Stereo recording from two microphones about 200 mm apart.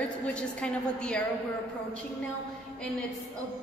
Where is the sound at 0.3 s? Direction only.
5° left (ahead or behind).